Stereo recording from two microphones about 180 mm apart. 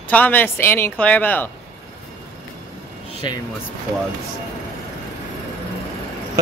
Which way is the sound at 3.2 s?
25° left (ahead or behind).